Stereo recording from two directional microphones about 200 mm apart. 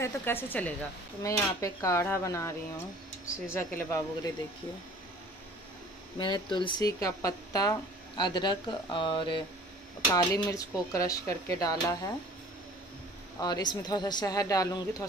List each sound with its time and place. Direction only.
0.0 s speech: 10° left (ahead or behind)
6.1 s speech: 25° left (ahead or behind)
13.4 s speech: 20° left (ahead or behind)